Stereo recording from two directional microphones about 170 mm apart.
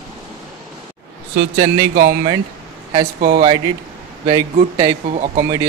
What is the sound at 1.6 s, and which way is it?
Speech, 60° right (ahead or behind).